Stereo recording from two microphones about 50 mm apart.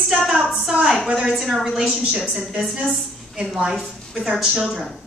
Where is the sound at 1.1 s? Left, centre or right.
Centre.